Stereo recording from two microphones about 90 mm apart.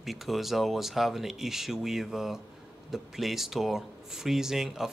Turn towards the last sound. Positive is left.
turn(degrees=-5)  # may be behind; listen again after turning